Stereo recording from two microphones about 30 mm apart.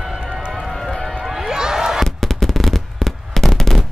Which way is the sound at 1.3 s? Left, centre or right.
Centre.